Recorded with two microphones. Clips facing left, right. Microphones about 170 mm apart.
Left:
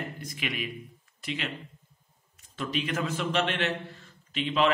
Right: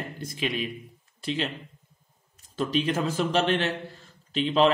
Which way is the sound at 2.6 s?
35° right (ahead or behind).